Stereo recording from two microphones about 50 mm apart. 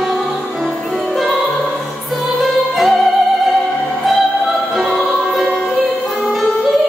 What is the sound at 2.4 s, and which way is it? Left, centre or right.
Opera, centre.